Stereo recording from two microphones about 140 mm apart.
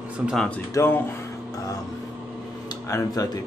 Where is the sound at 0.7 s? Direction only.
15° left (ahead or behind).